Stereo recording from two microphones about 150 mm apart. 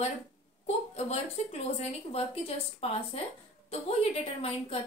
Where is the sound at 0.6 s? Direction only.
45° left (ahead or behind).